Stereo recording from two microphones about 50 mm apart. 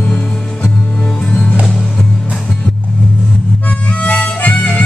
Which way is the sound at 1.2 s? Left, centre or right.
Left.